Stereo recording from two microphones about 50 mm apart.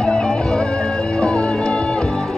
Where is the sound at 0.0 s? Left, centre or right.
Centre.